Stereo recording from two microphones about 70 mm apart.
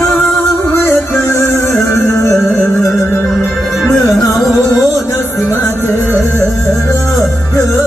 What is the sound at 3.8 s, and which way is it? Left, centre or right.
Music, left.